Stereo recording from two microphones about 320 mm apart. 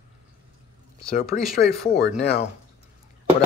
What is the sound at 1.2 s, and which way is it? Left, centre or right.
Speech, centre.